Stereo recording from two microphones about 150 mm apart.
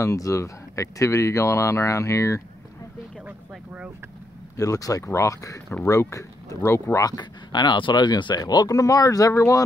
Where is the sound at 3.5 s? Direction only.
5° right (ahead or behind).